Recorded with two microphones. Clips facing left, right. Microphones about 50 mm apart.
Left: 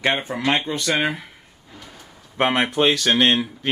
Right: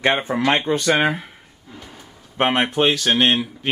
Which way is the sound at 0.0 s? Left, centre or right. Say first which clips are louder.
Right 3 dB; right.